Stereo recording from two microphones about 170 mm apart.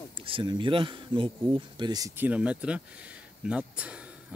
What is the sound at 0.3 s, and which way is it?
Speech, 30° right (ahead or behind).